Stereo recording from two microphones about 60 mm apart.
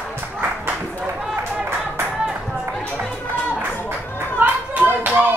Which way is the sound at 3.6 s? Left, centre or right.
Right.